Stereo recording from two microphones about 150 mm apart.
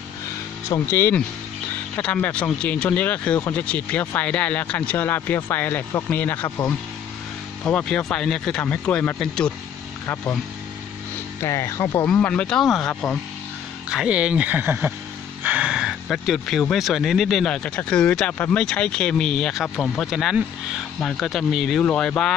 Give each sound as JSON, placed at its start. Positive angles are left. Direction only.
{"t": 0.7, "sound": "speech", "side_deg": 15}
{"t": 11.4, "sound": "speech", "side_deg": 20}
{"t": 12.1, "sound": "speech", "side_deg": 10}